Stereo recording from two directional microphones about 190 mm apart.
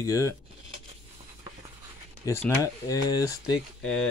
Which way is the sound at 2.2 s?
15° left (ahead or behind).